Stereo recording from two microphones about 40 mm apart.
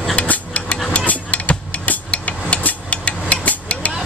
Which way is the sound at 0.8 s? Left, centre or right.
Left.